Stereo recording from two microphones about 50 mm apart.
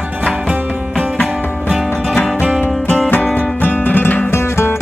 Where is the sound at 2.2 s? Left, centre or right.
Centre.